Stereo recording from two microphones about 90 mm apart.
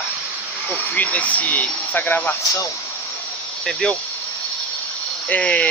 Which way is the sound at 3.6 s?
10° left (ahead or behind).